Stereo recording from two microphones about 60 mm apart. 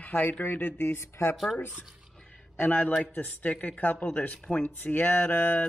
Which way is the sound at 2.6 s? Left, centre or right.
Left.